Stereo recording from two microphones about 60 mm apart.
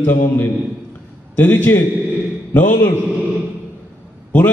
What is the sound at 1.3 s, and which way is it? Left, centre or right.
Speech, left.